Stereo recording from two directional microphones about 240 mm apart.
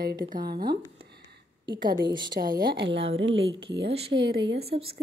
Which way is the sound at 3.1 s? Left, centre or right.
Right.